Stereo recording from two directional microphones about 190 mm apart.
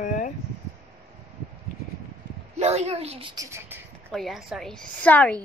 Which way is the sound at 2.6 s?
35° right (ahead or behind).